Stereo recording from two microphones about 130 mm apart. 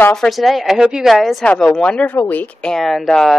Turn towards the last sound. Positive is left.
turn(degrees=5)  # may be behind; listen again after turning